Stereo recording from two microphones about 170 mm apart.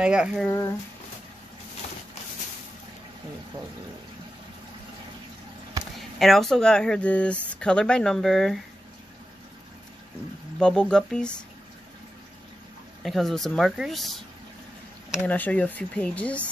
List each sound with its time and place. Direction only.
0.0 s speech: 5° right (ahead or behind)
0.5 s speech: 20° left (ahead or behind)
5.9 s speech: centre (ahead or behind)
10.6 s speech: 5° left (ahead or behind)
13.0 s speech: centre (ahead or behind)
15.2 s speech: 10° left (ahead or behind)